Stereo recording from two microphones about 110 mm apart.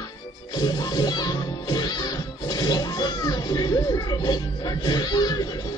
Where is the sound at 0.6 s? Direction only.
40° left (ahead or behind).